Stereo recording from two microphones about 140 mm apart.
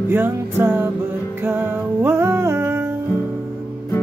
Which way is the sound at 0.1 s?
15° right (ahead or behind).